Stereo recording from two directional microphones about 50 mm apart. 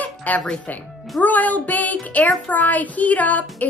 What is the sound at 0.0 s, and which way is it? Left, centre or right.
Music, left.